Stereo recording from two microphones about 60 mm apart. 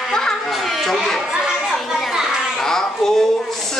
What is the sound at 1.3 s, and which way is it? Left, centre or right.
Children playing, centre.